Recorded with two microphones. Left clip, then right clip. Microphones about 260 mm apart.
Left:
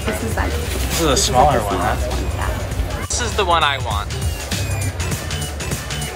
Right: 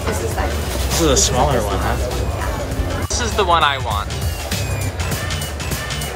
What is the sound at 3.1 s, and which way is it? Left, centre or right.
Speech, centre.